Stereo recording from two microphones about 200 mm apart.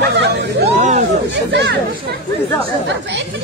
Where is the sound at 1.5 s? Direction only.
60° right (ahead or behind).